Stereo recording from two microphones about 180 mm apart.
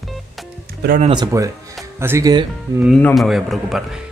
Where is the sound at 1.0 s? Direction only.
30° right (ahead or behind).